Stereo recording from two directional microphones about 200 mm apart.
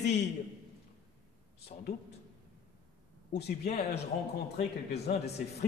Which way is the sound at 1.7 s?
35° left (ahead or behind).